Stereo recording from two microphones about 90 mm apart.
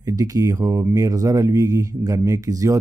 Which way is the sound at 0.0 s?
40° right (ahead or behind).